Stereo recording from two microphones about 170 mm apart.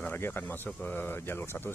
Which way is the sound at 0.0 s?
10° left (ahead or behind).